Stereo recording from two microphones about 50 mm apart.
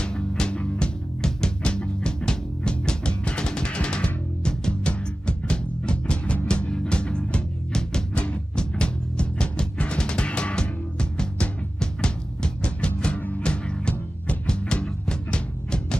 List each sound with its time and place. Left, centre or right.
0.0 s music: centre